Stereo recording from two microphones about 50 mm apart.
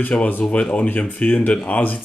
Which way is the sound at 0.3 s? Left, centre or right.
Left.